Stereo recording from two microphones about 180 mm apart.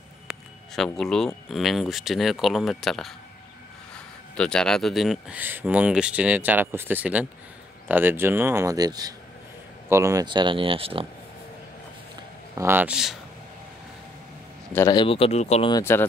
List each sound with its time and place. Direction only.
0.3 s speech: 5° left (ahead or behind); by 11.1 s 30° right (ahead or behind)
12.5 s speech: 10° right (ahead or behind)
14.9 s speech: 30° left (ahead or behind)
15.7 s speech: 15° left (ahead or behind)